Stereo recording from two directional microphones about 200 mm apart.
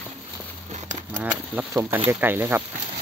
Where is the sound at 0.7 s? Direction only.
35° right (ahead or behind).